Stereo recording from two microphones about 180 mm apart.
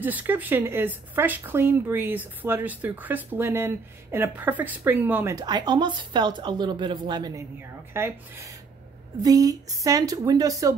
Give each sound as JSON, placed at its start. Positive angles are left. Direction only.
{"t": 0.0, "sound": "a woman's voice", "side_deg": -10}